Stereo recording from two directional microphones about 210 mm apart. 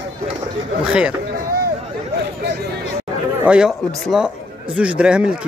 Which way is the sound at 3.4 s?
5° right (ahead or behind).